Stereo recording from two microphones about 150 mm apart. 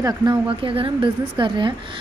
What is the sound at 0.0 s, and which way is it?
A woman's voice, 30° right (ahead or behind).